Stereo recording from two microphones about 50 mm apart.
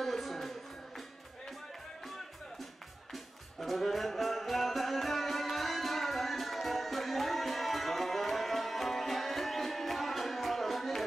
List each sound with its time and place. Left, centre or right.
0.0 s music: centre
3.1 s music: centre